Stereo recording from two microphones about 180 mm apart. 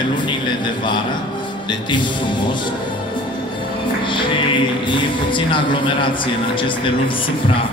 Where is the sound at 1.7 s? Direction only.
25° left (ahead or behind).